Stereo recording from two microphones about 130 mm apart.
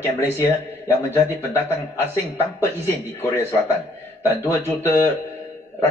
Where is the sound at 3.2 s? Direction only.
15° left (ahead or behind).